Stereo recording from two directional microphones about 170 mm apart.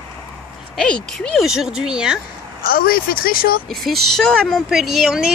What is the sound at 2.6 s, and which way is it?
Speech, 60° left (ahead or behind).